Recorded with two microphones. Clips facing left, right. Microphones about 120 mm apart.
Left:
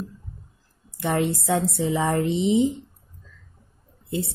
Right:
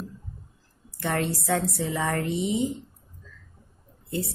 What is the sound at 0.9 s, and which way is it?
Speech, 15° left (ahead or behind).